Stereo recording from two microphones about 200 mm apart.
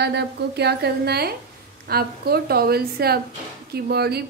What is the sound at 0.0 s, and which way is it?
Speech, 55° right (ahead or behind).